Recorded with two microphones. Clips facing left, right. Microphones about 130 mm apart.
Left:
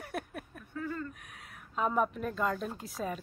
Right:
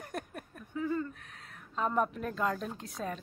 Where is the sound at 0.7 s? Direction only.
15° right (ahead or behind).